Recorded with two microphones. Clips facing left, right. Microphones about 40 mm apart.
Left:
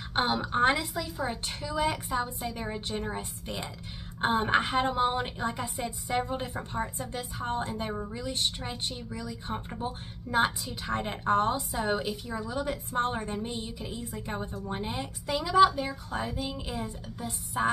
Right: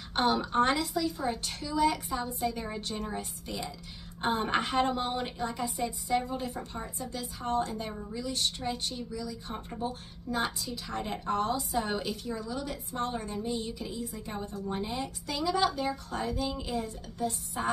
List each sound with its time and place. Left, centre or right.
0.1 s a woman's voice: left
4.2 s a woman's voice: centre; by 11.6 s left
11.8 s a woman's voice: centre
12.4 s a woman's voice: left; by 17.6 s centre